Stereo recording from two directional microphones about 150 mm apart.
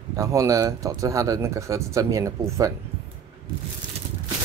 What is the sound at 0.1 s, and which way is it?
Speech, 20° right (ahead or behind).